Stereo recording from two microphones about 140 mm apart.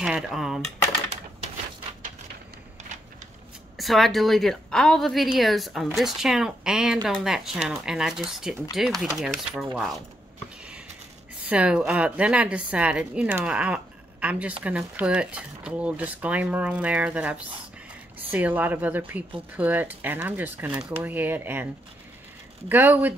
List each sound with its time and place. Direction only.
0.0 s speech: 5° right (ahead or behind)
3.7 s a woman's voice: centre (ahead or behind)
11.4 s speech: 10° right (ahead or behind)
22.7 s speech: 15° right (ahead or behind)